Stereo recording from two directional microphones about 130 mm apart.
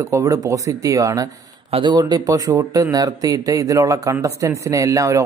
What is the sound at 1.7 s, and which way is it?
Speech, 40° right (ahead or behind).